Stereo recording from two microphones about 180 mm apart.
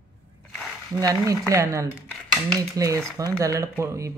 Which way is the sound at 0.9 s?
20° right (ahead or behind).